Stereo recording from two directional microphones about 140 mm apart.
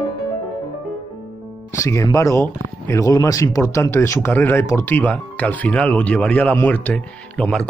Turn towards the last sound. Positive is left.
turn(degrees=5)  # may be behind; listen again after turning